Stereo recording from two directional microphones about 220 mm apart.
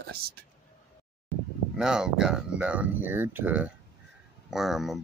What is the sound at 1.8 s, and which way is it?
Speech, 5° right (ahead or behind).